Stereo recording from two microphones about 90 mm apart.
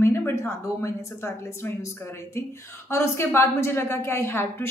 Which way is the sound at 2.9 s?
30° left (ahead or behind).